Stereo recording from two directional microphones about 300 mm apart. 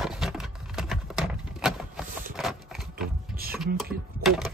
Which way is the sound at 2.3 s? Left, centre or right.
Centre.